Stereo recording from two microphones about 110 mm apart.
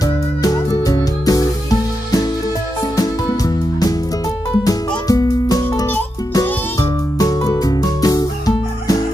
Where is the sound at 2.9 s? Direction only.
35° left (ahead or behind).